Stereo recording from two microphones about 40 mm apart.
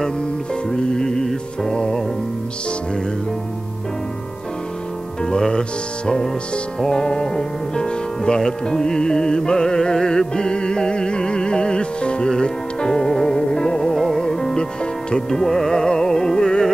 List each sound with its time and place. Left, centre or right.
0.7 s music: centre
5.2 s music: centre
13.7 s music: centre